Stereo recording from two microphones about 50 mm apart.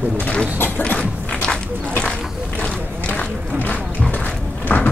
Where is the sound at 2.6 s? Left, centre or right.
Left.